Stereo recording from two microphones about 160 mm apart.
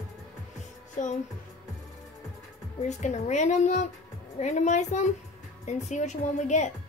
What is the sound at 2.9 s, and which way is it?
A woman's voice, 45° left (ahead or behind).